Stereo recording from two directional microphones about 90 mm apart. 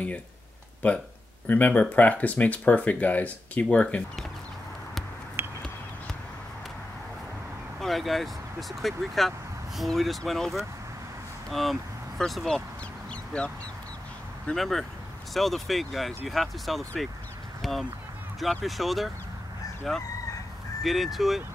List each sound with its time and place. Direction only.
0.8 s speech: 15° left (ahead or behind)
7.8 s speech: centre (ahead or behind)
13.1 s crow: 10° left (ahead or behind)
14.5 s speech: 5° left (ahead or behind)
17.6 s a sound: centre (ahead or behind)
18.4 s speech: centre (ahead or behind)